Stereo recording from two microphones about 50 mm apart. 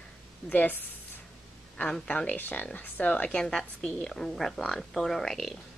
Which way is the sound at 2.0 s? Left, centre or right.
Left.